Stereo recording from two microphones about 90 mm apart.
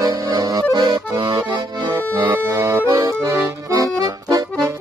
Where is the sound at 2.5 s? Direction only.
35° right (ahead or behind).